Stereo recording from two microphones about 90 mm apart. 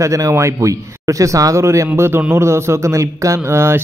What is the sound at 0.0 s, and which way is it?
Speech, 35° right (ahead or behind).